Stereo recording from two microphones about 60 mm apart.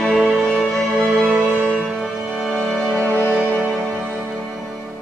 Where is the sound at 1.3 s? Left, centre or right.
Right.